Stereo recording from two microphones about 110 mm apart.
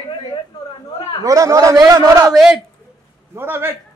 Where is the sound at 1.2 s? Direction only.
30° right (ahead or behind).